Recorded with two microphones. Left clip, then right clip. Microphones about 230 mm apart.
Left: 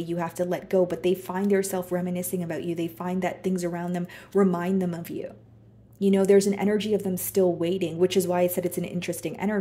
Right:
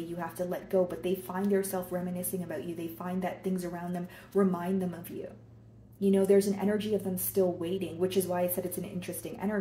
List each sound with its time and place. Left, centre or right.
0.1 s a woman's voice: left
5.9 s a woman's voice: left